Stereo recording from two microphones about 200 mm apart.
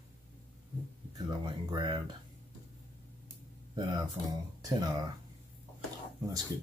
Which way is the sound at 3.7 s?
20° right (ahead or behind).